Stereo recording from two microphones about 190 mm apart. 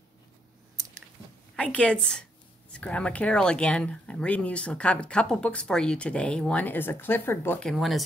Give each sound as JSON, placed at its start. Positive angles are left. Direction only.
{"t": 1.6, "sound": "speech", "side_deg": 5}
{"t": 7.7, "sound": "speech", "side_deg": 0}